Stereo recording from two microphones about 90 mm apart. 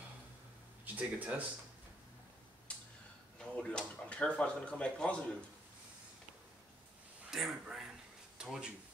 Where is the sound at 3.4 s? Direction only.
10° left (ahead or behind).